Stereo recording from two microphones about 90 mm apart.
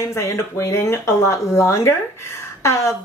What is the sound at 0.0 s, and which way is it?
Speech, 35° left (ahead or behind).